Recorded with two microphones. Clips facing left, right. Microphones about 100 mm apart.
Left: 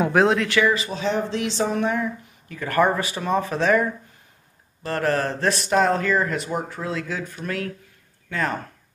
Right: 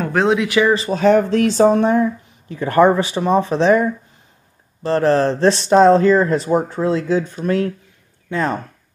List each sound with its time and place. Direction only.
0.1 s speech: centre (ahead or behind)
0.4 s speech: 15° right (ahead or behind)
0.7 s speech: 35° right (ahead or behind)
0.9 s speech: 50° right (ahead or behind); by 8.5 s 25° right (ahead or behind)